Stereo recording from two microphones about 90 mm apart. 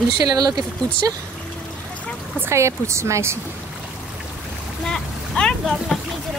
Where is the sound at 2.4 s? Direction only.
30° right (ahead or behind).